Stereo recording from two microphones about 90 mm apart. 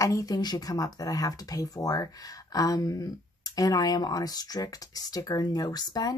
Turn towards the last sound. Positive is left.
turn(degrees=45)  # may be behind; listen again after turning